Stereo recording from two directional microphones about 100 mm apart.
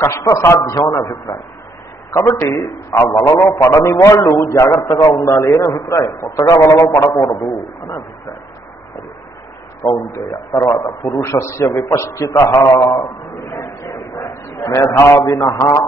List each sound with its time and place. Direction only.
0.0 s a man's voice: 25° left (ahead or behind)
2.0 s a sound: 30° left (ahead or behind)
2.5 s a man's voice: 30° left (ahead or behind)
9.8 s a man's voice: 30° left (ahead or behind)
12.4 s a man's voice: 40° left (ahead or behind)
12.7 s a man's voice: 30° left (ahead or behind)